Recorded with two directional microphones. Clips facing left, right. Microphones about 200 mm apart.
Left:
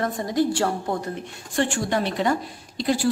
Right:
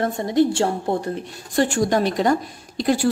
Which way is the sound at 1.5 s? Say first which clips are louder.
Right 4 dB; 40° right (ahead or behind).